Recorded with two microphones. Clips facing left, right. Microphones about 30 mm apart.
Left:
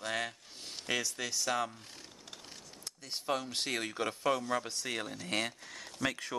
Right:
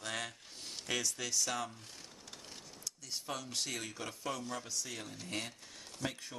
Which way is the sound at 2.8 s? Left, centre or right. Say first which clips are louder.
Left 5 dB; left.